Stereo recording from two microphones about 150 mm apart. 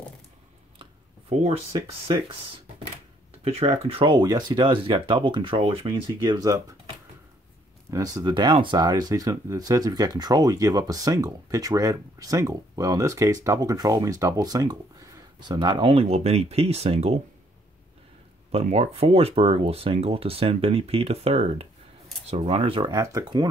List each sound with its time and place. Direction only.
3.5 s speech: 40° right (ahead or behind); by 6.6 s 25° right (ahead or behind)
7.9 s speech: 25° right (ahead or behind); by 17.2 s 45° right (ahead or behind)
18.5 s speech: 45° right (ahead or behind)
22.8 s speech: 20° right (ahead or behind)